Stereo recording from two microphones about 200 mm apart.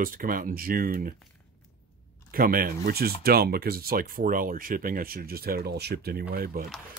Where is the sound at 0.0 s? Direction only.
45° right (ahead or behind).